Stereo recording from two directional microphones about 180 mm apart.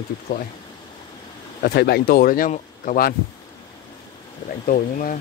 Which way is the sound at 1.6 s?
60° left (ahead or behind).